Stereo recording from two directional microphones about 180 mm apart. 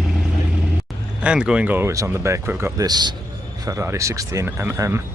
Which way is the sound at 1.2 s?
5° right (ahead or behind).